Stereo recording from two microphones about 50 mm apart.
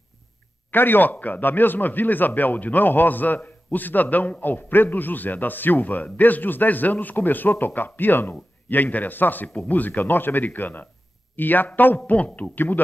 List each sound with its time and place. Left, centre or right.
0.7 s speech: left